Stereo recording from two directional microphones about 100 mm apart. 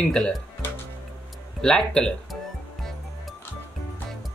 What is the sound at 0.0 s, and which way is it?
Speech, 5° left (ahead or behind).